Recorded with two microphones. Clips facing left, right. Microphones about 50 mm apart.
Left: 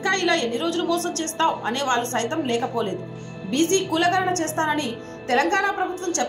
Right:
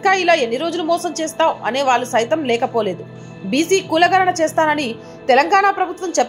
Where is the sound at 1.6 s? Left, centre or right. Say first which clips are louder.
Right 7 dB; right.